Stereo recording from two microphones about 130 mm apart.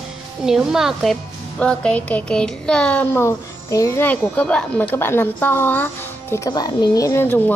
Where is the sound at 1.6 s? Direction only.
5° left (ahead or behind); by 4.0 s 25° left (ahead or behind).